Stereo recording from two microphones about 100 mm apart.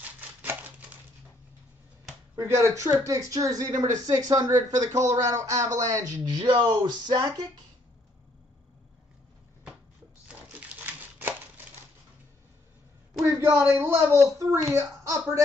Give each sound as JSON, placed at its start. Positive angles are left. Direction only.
{"t": 0.0, "sound": "a sound", "side_deg": -15}
{"t": 2.3, "sound": "speech", "side_deg": -30}
{"t": 6.4, "sound": "speech", "side_deg": -60}
{"t": 6.8, "sound": "speech", "side_deg": -45}
{"t": 10.2, "sound": "crumpling", "side_deg": -15}
{"t": 13.3, "sound": "a woman's voice", "side_deg": -20}